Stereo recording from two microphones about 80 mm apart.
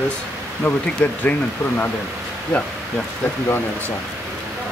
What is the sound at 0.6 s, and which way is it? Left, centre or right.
Speech, centre.